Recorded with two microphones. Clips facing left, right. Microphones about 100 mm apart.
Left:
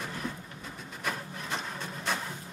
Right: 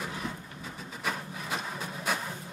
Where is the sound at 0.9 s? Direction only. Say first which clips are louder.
Right 1 dB; centre (ahead or behind).